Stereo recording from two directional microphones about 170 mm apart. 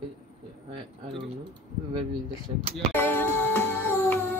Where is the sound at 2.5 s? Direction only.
35° right (ahead or behind).